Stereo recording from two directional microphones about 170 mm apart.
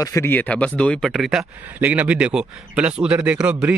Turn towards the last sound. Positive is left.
turn(degrees=-10)  # may be behind; listen again after turning